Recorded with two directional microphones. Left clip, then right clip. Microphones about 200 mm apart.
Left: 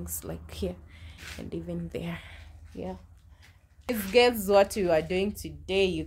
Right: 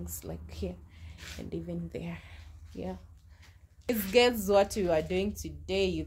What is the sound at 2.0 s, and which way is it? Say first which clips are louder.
Speech: left 5 dB; 20° left (ahead or behind).